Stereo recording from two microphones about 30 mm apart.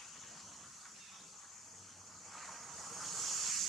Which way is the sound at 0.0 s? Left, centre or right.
Centre.